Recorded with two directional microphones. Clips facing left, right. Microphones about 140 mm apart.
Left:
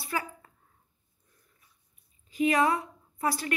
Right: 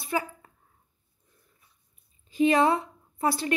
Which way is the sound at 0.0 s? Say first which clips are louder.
Right 4 dB; 20° right (ahead or behind).